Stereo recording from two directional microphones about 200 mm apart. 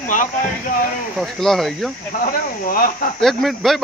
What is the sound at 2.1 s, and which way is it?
Speech, 45° left (ahead or behind).